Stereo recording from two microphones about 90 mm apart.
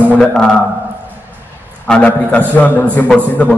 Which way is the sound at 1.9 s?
15° left (ahead or behind).